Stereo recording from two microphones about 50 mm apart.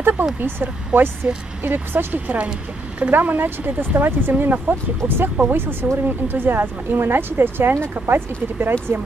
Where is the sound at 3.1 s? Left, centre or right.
Right.